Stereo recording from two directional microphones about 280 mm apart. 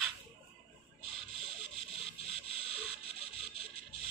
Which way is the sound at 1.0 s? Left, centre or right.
Centre.